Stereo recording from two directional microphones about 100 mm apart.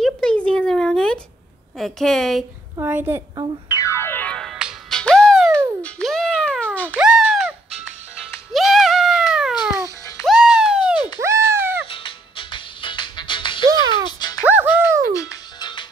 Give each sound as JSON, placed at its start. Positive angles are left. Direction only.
{"t": 0.0, "sound": "a sound", "side_deg": 10}
{"t": 1.8, "sound": "a woman's voice", "side_deg": 5}
{"t": 2.8, "sound": "a woman's voice", "side_deg": -20}
{"t": 3.7, "sound": "music", "side_deg": 30}
{"t": 4.3, "sound": "music", "side_deg": 5}
{"t": 6.9, "sound": "music", "side_deg": -10}
{"t": 8.5, "sound": "a sound", "side_deg": 0}
{"t": 10.2, "sound": "music", "side_deg": -5}
{"t": 11.1, "sound": "a sound", "side_deg": -30}
{"t": 11.9, "sound": "music", "side_deg": 60}
{"t": 13.7, "sound": "music", "side_deg": -40}
{"t": 14.0, "sound": "music", "side_deg": 45}
{"t": 14.4, "sound": "music", "side_deg": -20}